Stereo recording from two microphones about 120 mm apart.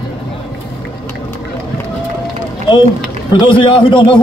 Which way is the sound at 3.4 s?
45° left (ahead or behind).